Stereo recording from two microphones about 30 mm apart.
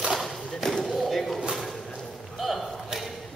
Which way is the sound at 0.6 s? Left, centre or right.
Centre.